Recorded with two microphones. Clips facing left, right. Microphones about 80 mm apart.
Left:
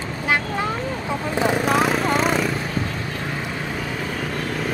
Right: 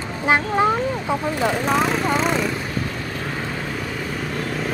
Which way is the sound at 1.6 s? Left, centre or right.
Centre.